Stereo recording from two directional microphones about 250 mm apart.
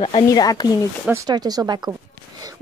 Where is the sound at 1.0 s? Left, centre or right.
Centre.